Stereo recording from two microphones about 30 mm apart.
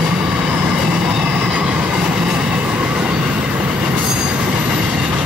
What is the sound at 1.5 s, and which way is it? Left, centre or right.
Train, right.